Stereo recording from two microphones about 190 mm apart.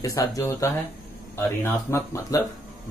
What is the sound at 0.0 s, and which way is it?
Speech, 15° left (ahead or behind).